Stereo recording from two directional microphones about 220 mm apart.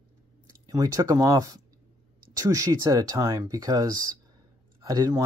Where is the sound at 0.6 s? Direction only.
15° right (ahead or behind).